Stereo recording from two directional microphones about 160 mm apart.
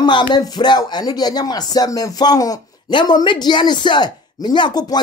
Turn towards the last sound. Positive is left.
turn(degrees=25)  # may be behind; listen again after turning